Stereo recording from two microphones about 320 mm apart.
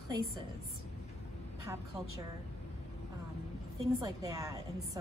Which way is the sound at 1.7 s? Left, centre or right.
Centre.